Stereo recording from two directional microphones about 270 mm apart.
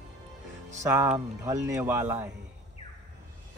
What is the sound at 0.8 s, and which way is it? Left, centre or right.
A man's voice, centre.